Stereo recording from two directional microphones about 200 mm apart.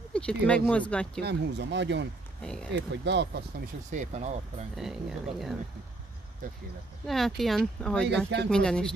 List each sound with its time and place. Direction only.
0.1 s speech: 5° left (ahead or behind)
1.2 s speech: 60° right (ahead or behind)
2.4 s speech: 5° left (ahead or behind)
2.7 s speech: 60° right (ahead or behind)
3.9 s speech: 35° right (ahead or behind)
4.7 s speech: centre (ahead or behind)
7.1 s speech: centre (ahead or behind)